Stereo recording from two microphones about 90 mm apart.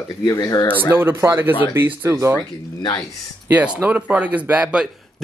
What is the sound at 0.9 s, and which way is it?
Speech, 25° right (ahead or behind).